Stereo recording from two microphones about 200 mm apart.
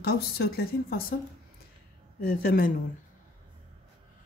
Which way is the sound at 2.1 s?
50° left (ahead or behind).